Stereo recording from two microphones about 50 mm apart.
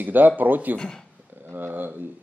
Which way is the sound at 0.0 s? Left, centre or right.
Right.